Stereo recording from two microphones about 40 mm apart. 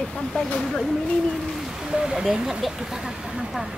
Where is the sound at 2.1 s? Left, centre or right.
Centre.